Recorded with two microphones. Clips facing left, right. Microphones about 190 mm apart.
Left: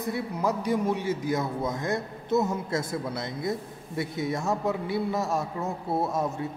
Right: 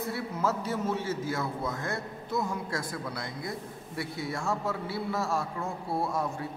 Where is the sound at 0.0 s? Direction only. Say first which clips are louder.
Left 2 dB; 15° left (ahead or behind).